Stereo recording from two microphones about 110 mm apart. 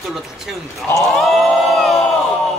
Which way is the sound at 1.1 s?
Centre (ahead or behind).